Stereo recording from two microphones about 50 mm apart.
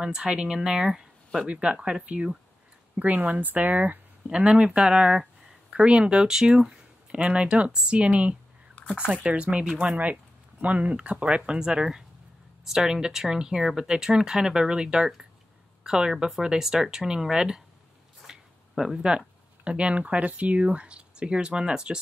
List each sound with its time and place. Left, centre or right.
0.0 s speech: centre
1.5 s speech: centre
3.0 s speech: right
4.3 s speech: right